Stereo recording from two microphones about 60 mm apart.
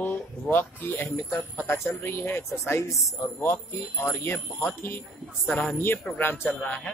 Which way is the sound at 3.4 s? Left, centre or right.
Left.